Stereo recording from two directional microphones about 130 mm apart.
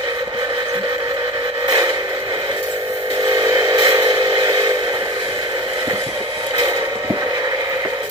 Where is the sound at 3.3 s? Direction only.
40° right (ahead or behind).